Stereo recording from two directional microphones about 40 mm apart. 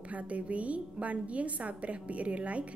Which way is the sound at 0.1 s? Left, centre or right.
Right.